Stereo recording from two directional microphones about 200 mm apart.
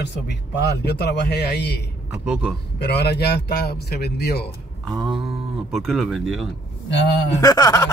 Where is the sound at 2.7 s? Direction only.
55° left (ahead or behind).